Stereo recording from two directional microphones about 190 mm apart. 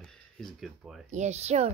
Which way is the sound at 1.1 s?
35° right (ahead or behind).